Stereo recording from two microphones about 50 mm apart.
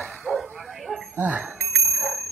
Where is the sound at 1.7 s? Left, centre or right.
Centre.